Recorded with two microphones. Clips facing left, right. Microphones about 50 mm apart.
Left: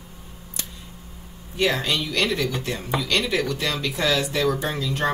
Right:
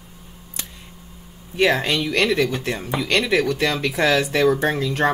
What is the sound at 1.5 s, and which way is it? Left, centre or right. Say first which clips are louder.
Speech: right 4 dB; right.